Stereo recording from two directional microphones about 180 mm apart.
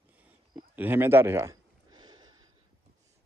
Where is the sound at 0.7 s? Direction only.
10° right (ahead or behind).